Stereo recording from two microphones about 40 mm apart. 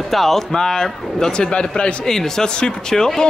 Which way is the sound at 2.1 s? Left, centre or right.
Centre.